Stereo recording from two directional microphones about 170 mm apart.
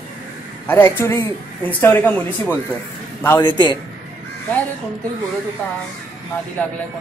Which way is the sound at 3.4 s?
25° left (ahead or behind).